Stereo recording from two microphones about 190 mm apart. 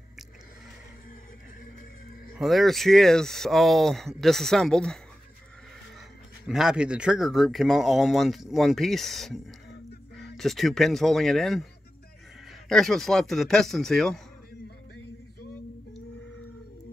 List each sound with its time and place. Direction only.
2.3 s speech: centre (ahead or behind)
6.4 s speech: 5° right (ahead or behind)
12.6 s speech: centre (ahead or behind)